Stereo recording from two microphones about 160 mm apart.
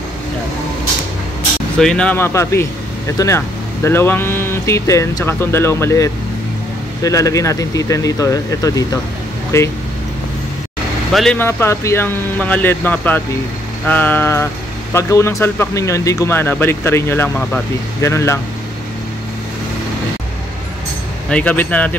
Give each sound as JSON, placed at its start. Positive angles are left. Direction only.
{"t": 1.8, "sound": "speech", "side_deg": 5}
{"t": 11.1, "sound": "speech", "side_deg": 0}
{"t": 11.3, "sound": "speech", "side_deg": 15}
{"t": 18.0, "sound": "speech", "side_deg": 15}
{"t": 21.3, "sound": "speech", "side_deg": 10}